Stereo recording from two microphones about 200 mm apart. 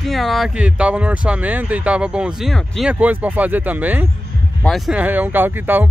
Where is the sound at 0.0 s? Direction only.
Centre (ahead or behind).